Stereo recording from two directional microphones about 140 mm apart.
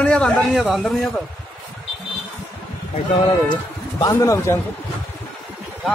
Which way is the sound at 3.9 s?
20° left (ahead or behind).